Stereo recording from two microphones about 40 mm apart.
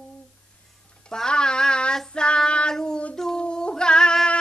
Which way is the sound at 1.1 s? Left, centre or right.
Centre.